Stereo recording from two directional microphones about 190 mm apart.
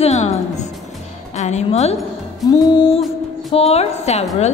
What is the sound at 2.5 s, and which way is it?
A woman's voice, 25° left (ahead or behind).